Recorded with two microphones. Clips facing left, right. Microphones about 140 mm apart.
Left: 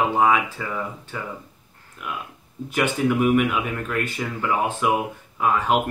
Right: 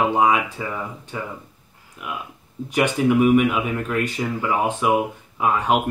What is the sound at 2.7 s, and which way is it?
Speech, 10° right (ahead or behind).